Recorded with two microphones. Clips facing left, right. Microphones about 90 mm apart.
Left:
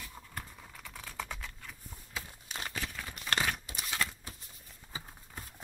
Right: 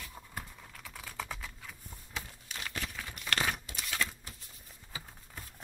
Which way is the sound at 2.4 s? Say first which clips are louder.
Left 2 dB; 35° left (ahead or behind).